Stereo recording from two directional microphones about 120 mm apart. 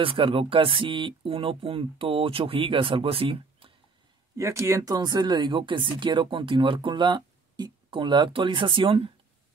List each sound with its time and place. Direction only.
0.0 s speech: 50° right (ahead or behind)
4.4 s speech: 25° right (ahead or behind); by 9.1 s 45° right (ahead or behind)